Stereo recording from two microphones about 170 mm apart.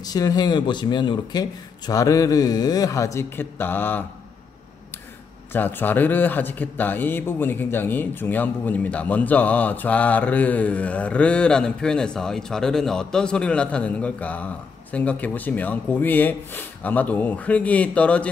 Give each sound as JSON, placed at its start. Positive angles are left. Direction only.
{"t": 0.0, "sound": "speech", "side_deg": 20}
{"t": 5.5, "sound": "a man's voice", "side_deg": 10}